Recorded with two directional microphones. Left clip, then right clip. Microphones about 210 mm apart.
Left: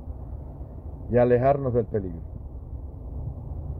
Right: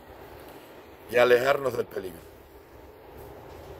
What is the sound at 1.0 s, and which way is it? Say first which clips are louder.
Speech: even; 15° right (ahead or behind).